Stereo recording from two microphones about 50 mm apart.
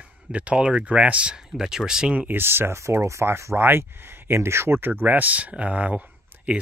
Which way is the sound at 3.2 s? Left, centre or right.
Right.